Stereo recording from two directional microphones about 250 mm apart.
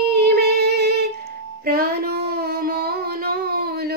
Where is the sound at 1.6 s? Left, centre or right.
Right.